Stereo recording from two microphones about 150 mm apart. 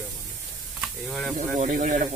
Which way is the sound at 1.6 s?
65° right (ahead or behind).